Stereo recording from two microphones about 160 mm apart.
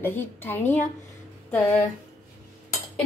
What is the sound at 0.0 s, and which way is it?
Speech, 15° left (ahead or behind).